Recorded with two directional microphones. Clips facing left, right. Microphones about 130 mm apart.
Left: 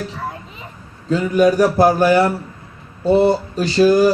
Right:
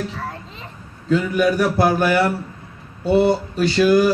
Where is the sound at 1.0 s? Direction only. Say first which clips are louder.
Left 3 dB; 40° left (ahead or behind).